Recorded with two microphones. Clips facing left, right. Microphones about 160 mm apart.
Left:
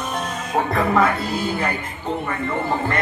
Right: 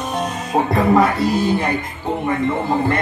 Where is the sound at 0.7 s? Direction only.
20° right (ahead or behind).